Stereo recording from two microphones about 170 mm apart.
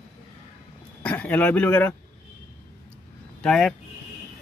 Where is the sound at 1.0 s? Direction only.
10° left (ahead or behind).